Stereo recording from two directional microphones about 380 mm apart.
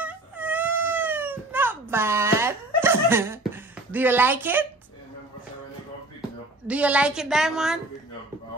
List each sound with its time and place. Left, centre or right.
0.0 s cat: centre
3.9 s a woman's voice: centre
6.7 s a woman's voice: centre